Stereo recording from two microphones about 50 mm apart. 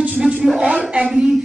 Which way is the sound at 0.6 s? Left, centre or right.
Centre.